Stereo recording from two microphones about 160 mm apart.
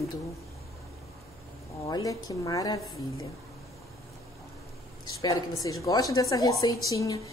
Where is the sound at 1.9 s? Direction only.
25° left (ahead or behind).